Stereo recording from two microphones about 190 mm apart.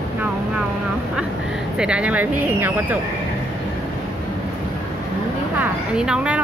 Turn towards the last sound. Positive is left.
turn(degrees=-5)  # may be behind; listen again after turning